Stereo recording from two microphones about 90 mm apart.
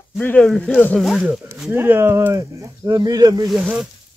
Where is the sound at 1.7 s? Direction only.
25° right (ahead or behind).